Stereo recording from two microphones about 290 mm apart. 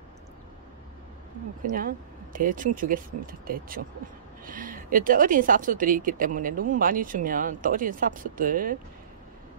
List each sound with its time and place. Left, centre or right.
1.6 s speech: right